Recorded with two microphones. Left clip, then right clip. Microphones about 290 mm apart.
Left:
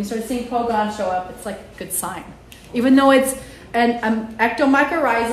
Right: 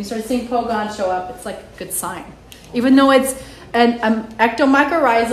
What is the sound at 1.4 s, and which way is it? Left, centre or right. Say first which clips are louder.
A woman's voice: right 1 dB; centre.